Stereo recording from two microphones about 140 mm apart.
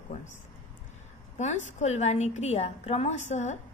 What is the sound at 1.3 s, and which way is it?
A woman's voice, 55° left (ahead or behind).